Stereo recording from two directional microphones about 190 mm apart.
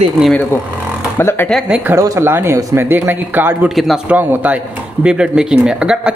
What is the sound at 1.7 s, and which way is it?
Speech, 10° right (ahead or behind).